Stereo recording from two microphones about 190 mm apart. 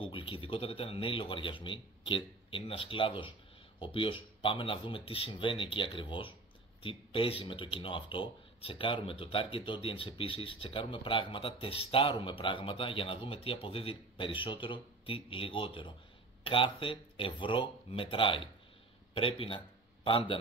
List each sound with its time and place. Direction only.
0.0 s a man's voice: 25° left (ahead or behind)